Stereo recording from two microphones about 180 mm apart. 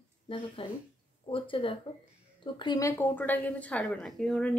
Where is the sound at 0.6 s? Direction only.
30° left (ahead or behind).